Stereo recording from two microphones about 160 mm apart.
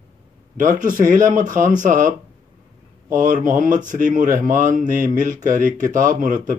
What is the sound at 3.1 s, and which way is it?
Speech, 60° right (ahead or behind).